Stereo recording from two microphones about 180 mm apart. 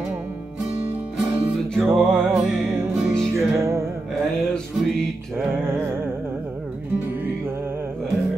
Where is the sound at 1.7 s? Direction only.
Centre (ahead or behind).